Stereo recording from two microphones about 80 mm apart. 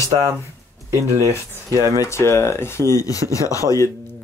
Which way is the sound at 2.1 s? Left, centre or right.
Left.